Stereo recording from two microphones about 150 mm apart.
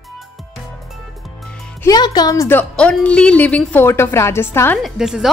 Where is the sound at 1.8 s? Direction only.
25° left (ahead or behind).